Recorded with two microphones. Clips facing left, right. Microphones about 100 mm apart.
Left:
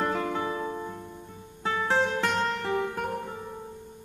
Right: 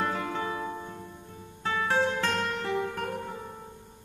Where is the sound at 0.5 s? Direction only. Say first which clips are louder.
Left 2 dB; 20° left (ahead or behind).